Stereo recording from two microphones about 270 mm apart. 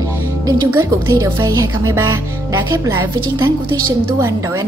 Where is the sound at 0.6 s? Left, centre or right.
Centre.